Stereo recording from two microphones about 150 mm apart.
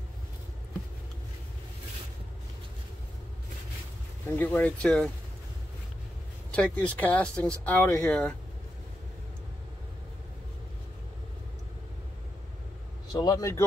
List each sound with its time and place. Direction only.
4.4 s speech: 10° left (ahead or behind)
6.5 s speech: 10° left (ahead or behind)
13.1 s speech: 25° left (ahead or behind)